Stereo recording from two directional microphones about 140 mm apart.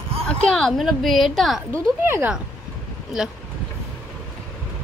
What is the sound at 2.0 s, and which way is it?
Speech, 15° right (ahead or behind).